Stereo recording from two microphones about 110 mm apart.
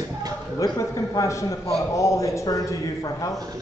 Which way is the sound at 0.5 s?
30° left (ahead or behind).